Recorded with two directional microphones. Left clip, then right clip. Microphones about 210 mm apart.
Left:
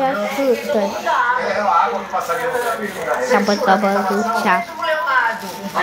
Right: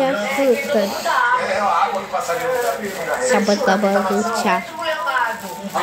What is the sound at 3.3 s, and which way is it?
Speech, 10° right (ahead or behind).